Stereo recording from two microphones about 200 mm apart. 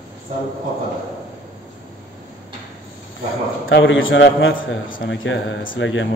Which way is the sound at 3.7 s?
75° left (ahead or behind).